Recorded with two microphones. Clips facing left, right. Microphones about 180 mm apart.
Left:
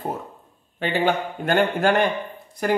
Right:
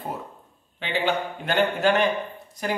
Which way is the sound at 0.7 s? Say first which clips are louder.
Left 3 dB; 45° left (ahead or behind).